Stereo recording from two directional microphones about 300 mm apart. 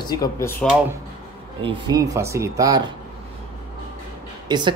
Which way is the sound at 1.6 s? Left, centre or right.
Centre.